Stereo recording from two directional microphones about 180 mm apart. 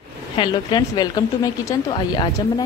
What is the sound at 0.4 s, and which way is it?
Speech, 25° left (ahead or behind).